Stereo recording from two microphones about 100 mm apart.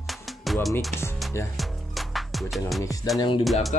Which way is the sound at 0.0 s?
Centre (ahead or behind).